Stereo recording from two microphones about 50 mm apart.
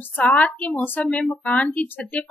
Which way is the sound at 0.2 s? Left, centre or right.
Left.